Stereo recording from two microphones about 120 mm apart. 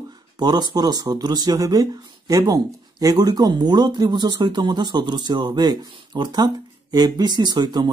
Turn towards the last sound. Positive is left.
turn(degrees=-35)  # may be behind; listen again after turning